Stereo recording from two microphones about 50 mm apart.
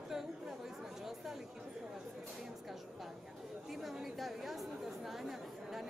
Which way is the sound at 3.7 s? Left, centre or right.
Centre.